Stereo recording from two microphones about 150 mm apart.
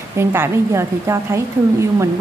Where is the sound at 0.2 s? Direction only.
15° right (ahead or behind).